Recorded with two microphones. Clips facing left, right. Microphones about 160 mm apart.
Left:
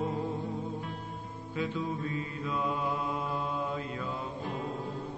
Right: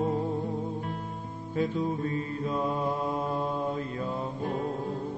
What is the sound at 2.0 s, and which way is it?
Mantra, 40° right (ahead or behind).